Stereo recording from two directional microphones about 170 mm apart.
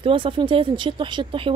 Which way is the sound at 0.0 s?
30° right (ahead or behind).